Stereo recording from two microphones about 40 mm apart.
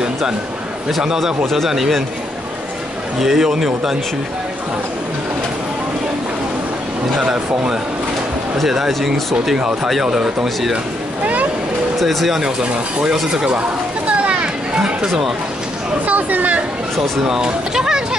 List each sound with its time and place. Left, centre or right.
1.0 s speech: centre
3.2 s speech: centre
7.2 s speech: right
8.5 s speech: centre
12.0 s speech: centre
13.0 s speech: centre
13.6 s a sound: right
14.8 s speech: centre
16.1 s speech: right
17.2 s speech: centre